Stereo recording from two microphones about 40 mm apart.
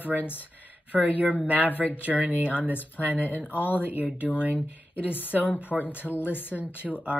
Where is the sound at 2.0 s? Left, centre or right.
Right.